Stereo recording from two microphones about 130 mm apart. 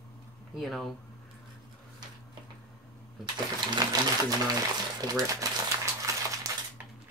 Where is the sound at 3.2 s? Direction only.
35° right (ahead or behind).